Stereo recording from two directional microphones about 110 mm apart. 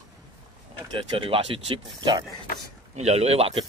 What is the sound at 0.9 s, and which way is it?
Speech, 55° right (ahead or behind).